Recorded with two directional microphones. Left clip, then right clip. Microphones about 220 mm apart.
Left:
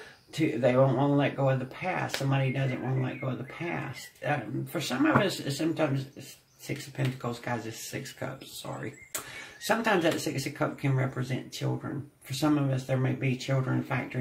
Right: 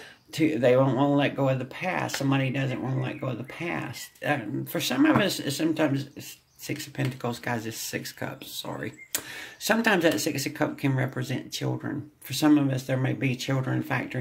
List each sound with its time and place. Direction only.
0.3 s speech: 45° right (ahead or behind)
4.2 s speech: 45° right (ahead or behind)